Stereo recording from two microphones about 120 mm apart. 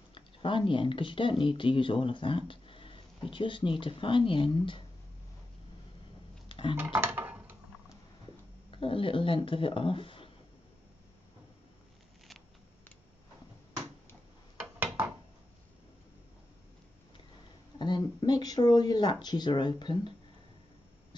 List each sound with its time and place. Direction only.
0.1 s speech: 45° left (ahead or behind)
6.5 s dishes: 45° left (ahead or behind)
6.8 s a sound: 15° right (ahead or behind)
8.6 s speech: 50° left (ahead or behind)
14.8 s a sound: 15° right (ahead or behind)
17.7 s speech: 40° left (ahead or behind)